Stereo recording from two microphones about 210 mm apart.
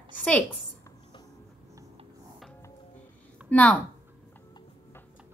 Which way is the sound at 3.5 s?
5° left (ahead or behind).